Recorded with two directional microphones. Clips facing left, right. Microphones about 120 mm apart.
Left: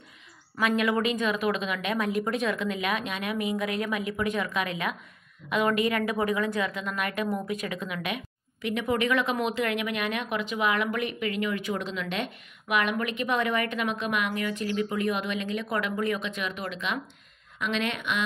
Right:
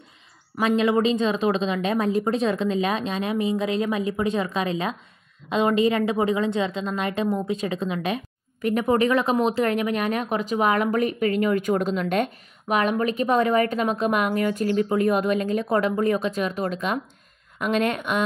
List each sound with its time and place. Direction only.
0.6 s a woman's voice: 30° right (ahead or behind)
8.5 s speech: 45° right (ahead or behind)